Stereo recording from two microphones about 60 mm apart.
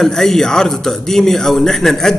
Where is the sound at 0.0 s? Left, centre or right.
Centre.